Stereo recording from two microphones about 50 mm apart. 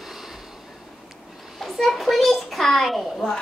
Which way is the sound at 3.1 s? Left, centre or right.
Centre.